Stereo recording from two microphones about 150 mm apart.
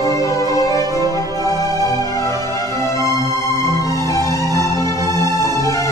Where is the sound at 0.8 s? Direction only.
25° right (ahead or behind).